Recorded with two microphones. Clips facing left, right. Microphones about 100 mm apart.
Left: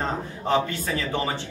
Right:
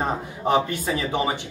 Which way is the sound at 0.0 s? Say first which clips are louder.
Right 3 dB; 15° right (ahead or behind).